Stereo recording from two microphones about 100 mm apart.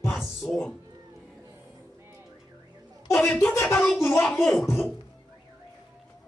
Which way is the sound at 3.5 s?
25° left (ahead or behind).